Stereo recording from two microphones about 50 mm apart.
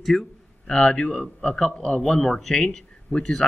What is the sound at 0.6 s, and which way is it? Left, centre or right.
Speech, centre.